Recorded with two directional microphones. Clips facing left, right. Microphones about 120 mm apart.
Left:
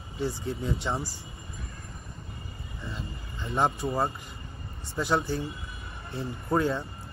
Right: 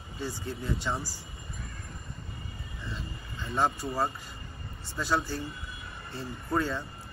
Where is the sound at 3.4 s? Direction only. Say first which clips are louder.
Left 2 dB; 20° left (ahead or behind).